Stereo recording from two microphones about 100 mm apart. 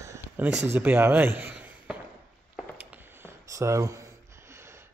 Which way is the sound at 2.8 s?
20° right (ahead or behind).